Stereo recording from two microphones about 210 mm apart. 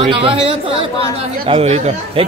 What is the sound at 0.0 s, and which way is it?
A man's voice, 25° right (ahead or behind).